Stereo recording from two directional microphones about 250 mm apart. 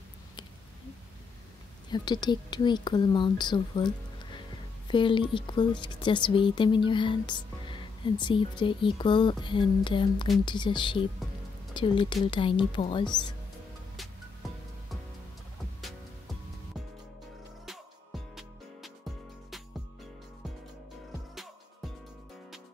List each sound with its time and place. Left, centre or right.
1.9 s speech: centre
17.6 s music: centre